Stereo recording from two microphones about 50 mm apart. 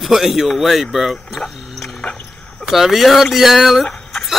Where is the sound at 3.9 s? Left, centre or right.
Centre.